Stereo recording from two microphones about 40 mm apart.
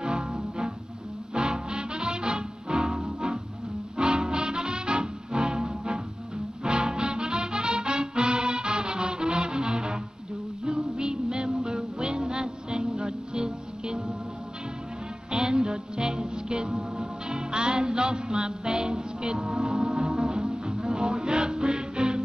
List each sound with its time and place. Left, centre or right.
0.0 s music: centre
4.0 s music: right
11.0 s music: centre
15.3 s music: right